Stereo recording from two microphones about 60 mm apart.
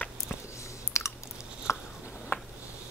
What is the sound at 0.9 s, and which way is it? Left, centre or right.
Chewing, left.